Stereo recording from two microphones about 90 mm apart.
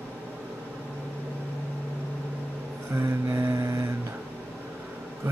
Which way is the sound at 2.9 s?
30° right (ahead or behind).